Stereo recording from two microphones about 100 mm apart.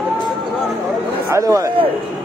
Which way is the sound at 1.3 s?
35° right (ahead or behind).